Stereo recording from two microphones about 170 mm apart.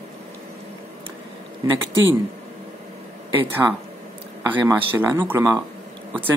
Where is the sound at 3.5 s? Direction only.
10° right (ahead or behind).